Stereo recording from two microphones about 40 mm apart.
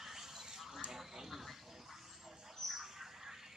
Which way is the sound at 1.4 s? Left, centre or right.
Centre.